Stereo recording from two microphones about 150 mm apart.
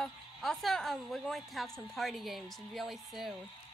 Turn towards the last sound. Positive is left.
turn(degrees=0)  # may be behind; listen again after turning